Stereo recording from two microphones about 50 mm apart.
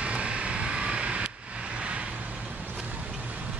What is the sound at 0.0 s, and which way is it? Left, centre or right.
Vehicle, right.